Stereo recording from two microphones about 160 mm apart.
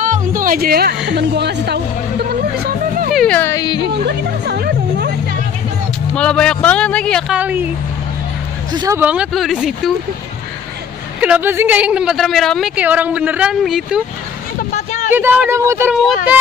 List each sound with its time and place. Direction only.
0.0 s speech: 55° right (ahead or behind); by 3.1 s 85° right
3.1 s music: centre (ahead or behind)
3.3 s speech: 20° left (ahead or behind)
4.0 s speech: 80° right
6.1 s a man's voice: 5° left (ahead or behind)
7.3 s a woman's voice: 10° right (ahead or behind)
8.7 s speech: 20° right (ahead or behind)
9.0 s speech: 5° right (ahead or behind)
11.1 s a woman's voice: 10° right (ahead or behind)
15.0 s a woman's voice: 15° right (ahead or behind)